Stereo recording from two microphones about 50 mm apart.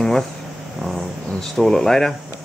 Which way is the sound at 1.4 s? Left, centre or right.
Centre.